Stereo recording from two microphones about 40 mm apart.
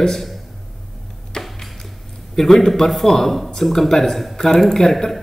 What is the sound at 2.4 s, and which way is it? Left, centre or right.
A man's voice, centre.